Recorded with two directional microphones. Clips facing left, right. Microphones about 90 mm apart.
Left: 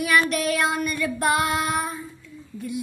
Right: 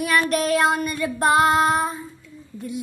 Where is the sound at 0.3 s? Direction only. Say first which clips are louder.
Right 4 dB; 40° right (ahead or behind).